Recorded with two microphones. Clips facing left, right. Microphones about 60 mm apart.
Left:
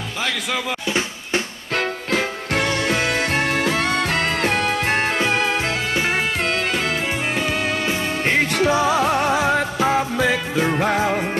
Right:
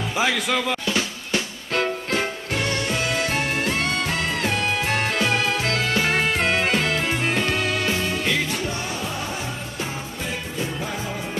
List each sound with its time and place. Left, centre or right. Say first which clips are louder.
0.2 s speech: right 2 dB; centre
0.8 s drum: left 2 dB; left
3.2 s music: left 3 dB; left
4.8 s music: left 3 dB; left
5.7 s music: even; centre
6.4 s music: right 1 dB; centre
6.8 s music: even; centre
8.5 s music: left 10 dB; left